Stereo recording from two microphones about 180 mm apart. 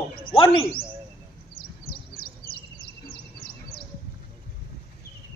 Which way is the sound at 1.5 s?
55° left (ahead or behind).